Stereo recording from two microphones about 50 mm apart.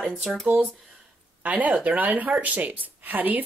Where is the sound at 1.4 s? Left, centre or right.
Right.